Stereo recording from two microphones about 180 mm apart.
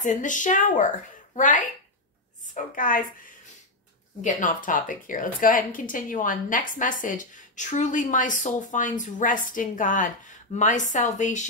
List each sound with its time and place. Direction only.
0.0 s a woman's voice: 45° left (ahead or behind)